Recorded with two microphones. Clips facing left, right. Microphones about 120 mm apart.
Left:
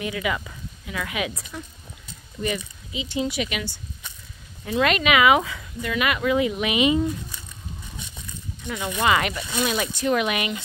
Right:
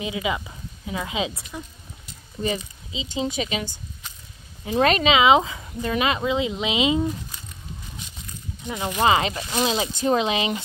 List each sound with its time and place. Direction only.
0.0 s speech: 20° right (ahead or behind)
2.4 s speech: 25° right (ahead or behind)
4.7 s speech: 35° right (ahead or behind)
5.1 s speech: 20° right (ahead or behind)
8.6 s speech: 25° right (ahead or behind)